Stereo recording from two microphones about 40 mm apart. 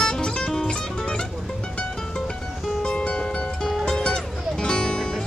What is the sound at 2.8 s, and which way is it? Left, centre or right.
Music, left.